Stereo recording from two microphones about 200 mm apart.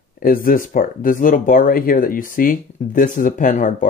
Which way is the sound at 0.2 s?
45° left (ahead or behind).